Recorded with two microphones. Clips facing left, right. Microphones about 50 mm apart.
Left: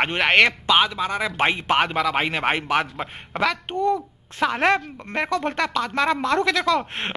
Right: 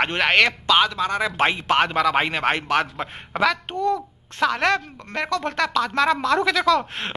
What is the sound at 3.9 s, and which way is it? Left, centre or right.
A woman's voice, centre.